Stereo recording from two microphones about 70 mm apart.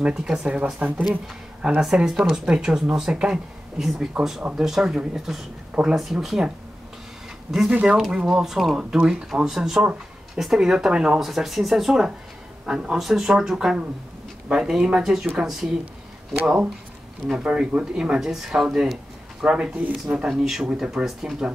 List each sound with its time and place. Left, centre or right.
0.0 s speech: centre
4.4 s speech: centre
7.7 s speech: centre
20.2 s speech: centre